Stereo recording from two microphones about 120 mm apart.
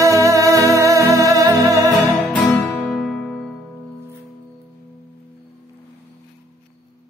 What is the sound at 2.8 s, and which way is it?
Music, centre (ahead or behind).